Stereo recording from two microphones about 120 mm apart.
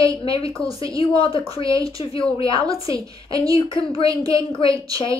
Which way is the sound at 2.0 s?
50° left (ahead or behind).